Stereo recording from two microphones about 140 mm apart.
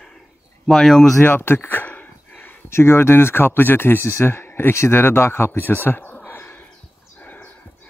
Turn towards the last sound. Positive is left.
turn(degrees=10)  # may be behind; listen again after turning